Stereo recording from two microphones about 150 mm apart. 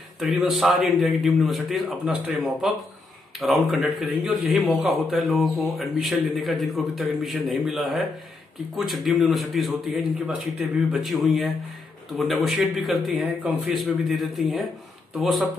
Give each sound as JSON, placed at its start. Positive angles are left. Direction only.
{"t": 0.2, "sound": "a man's voice", "side_deg": 0}